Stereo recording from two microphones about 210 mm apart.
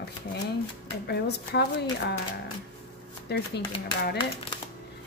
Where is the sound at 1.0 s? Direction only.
50° left (ahead or behind).